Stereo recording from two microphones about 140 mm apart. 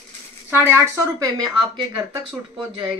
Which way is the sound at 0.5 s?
15° right (ahead or behind).